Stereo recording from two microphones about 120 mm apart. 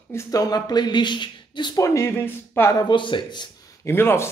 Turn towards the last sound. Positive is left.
turn(degrees=20)  # may be behind; listen again after turning